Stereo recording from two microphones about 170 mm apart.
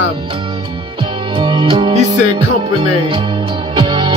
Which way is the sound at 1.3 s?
30° right (ahead or behind).